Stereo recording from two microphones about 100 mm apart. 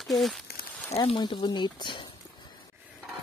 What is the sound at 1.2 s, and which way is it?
Speech, 45° left (ahead or behind).